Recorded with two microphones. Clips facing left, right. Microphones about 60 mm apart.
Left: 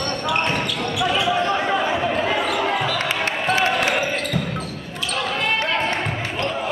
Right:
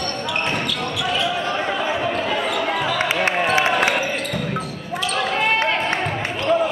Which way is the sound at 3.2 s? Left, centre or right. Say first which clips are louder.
Right 1 dB; right.